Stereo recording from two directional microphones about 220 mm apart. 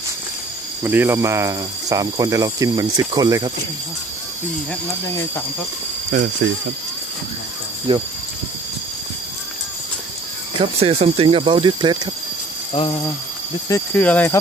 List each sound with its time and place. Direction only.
0.8 s speech: 10° right (ahead or behind)
6.1 s speech: 35° right (ahead or behind)
7.9 s speech: 25° right (ahead or behind)
10.8 s speech: 25° right (ahead or behind)
12.7 s speech: 20° left (ahead or behind)
13.7 s speech: 10° left (ahead or behind)